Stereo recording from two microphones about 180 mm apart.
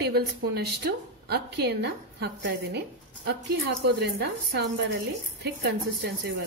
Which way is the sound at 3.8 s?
65° right (ahead or behind).